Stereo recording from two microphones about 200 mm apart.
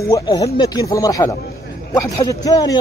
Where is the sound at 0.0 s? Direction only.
15° left (ahead or behind).